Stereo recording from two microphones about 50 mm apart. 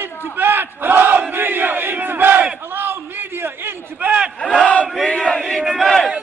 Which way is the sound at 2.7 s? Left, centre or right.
Right.